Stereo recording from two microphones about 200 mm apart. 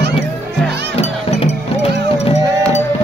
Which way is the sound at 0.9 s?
30° left (ahead or behind).